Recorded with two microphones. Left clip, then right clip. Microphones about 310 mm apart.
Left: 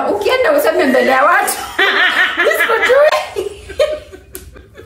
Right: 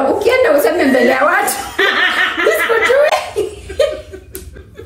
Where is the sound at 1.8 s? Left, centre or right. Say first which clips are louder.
Left 1 dB; centre.